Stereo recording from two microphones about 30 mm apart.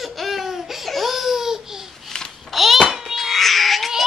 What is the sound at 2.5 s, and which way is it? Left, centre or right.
Hands, centre.